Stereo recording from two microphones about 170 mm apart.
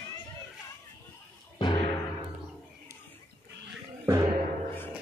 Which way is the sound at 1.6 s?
30° left (ahead or behind).